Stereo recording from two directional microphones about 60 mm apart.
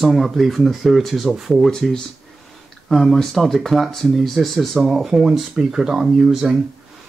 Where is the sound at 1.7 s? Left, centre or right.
Centre.